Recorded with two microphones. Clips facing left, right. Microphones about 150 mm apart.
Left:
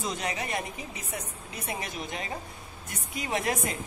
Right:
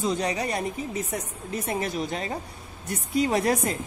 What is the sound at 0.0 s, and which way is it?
A woman's voice, 30° right (ahead or behind).